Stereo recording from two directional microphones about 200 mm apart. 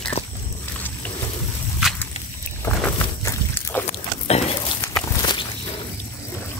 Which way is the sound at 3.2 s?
10° left (ahead or behind).